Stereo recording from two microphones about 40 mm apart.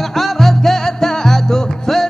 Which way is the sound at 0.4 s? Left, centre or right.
Centre.